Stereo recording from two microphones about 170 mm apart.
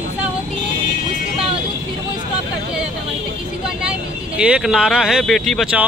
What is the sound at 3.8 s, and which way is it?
Speech, 5° right (ahead or behind).